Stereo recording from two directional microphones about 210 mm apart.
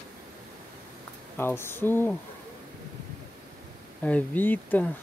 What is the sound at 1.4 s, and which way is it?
Speech, 10° left (ahead or behind).